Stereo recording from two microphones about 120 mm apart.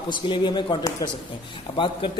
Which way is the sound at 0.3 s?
40° left (ahead or behind).